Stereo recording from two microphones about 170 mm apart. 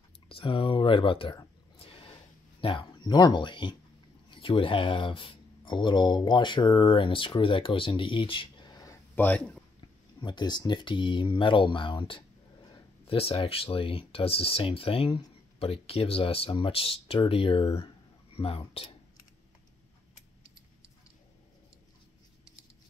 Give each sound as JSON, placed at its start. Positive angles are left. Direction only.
{"t": 0.3, "sound": "a sound", "side_deg": 30}
{"t": 2.6, "sound": "speech", "side_deg": 30}
{"t": 9.1, "sound": "a man's voice", "side_deg": 10}
{"t": 10.2, "sound": "speech", "side_deg": 25}